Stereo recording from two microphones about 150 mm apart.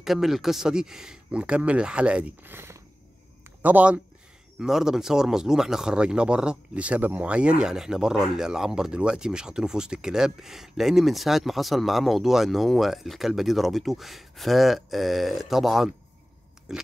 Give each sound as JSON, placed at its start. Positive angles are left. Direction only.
{"t": 0.0, "sound": "speech", "side_deg": 0}